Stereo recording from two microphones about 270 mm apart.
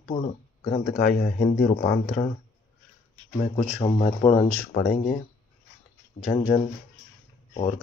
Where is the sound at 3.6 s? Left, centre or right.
Left.